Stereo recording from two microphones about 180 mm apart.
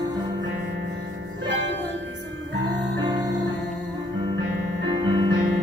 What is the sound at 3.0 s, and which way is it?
Music, 20° right (ahead or behind).